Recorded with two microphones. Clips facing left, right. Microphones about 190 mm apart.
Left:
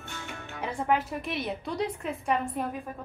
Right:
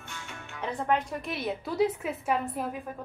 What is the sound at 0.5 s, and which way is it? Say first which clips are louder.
A woman's voice: even; 10° left (ahead or behind).